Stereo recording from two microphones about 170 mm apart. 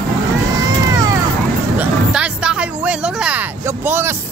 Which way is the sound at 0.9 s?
20° right (ahead or behind).